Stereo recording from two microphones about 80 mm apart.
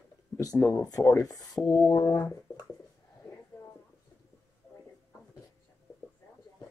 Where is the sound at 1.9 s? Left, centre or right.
Left.